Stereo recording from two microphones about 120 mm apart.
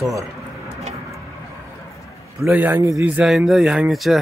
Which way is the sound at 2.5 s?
15° right (ahead or behind).